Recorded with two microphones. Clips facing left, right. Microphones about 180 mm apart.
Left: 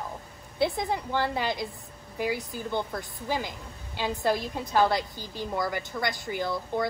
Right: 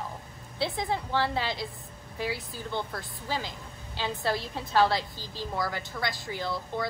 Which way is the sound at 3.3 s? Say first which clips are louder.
Left 2 dB; 55° left (ahead or behind).